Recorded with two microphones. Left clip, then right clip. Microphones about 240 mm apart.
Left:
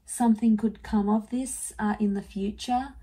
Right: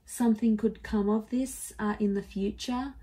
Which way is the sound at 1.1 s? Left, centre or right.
Left.